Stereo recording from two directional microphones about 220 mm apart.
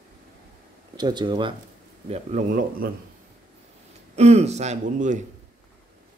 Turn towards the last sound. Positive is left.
turn(degrees=-30)  # may be behind; listen again after turning